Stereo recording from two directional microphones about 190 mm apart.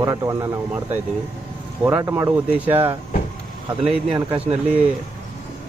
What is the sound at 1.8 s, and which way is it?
Speech, 15° right (ahead or behind).